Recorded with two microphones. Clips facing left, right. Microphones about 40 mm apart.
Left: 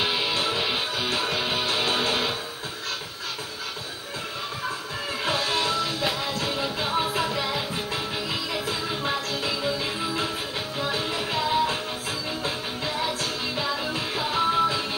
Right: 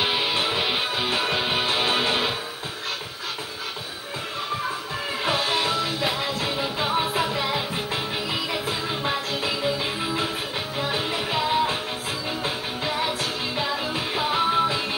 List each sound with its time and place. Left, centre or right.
0.0 s music: right
5.2 s music: right
10.8 s music: right